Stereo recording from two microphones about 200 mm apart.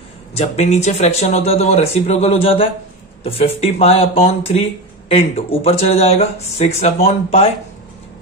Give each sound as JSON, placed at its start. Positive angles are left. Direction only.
{"t": 0.3, "sound": "speech", "side_deg": 30}